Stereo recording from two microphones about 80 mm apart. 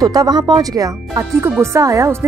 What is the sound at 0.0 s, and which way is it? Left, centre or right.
Speech, right.